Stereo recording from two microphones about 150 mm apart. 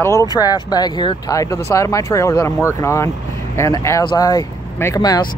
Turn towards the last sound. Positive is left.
turn(degrees=25)  # may be behind; listen again after turning